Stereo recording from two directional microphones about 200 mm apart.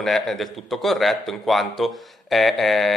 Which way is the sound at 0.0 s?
Centre (ahead or behind).